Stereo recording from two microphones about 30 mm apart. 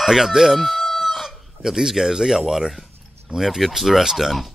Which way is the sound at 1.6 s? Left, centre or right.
Centre.